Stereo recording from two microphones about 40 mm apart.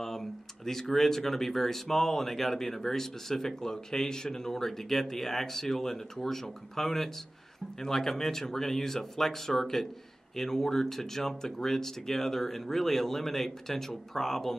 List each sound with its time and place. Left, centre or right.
0.0 s speech: centre